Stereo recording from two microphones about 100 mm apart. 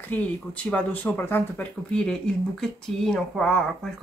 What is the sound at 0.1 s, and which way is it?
Speech, 15° left (ahead or behind).